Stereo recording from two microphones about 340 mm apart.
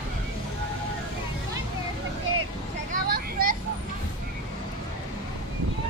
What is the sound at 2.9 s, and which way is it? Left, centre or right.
Vehicle, right.